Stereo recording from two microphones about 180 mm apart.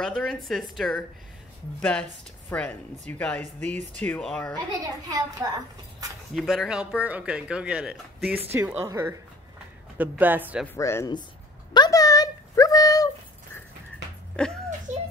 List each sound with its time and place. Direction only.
0.0 s speech: 5° left (ahead or behind)
6.3 s speech: centre (ahead or behind)
10.7 s speech: 15° left (ahead or behind)
11.7 s a sound: 20° left (ahead or behind)
14.3 s speech: 5° left (ahead or behind)
14.9 s music: 40° right (ahead or behind)